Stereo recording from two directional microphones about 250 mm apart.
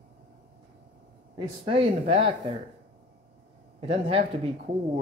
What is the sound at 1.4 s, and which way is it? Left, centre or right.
Speech, right.